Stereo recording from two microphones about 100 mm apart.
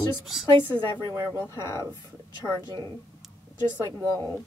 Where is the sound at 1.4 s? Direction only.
30° left (ahead or behind).